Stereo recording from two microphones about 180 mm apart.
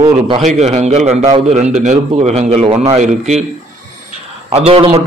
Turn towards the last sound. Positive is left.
turn(degrees=-30)  # may be behind; listen again after turning